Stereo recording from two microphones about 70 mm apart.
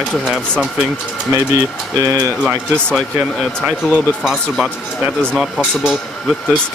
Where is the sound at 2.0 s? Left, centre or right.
Right.